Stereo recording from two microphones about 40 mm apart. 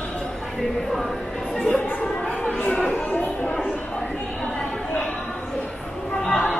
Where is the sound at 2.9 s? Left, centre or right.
Left.